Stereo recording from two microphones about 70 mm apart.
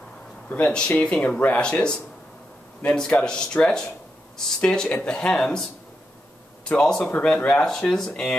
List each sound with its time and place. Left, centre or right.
0.5 s speech: centre
6.8 s speech: centre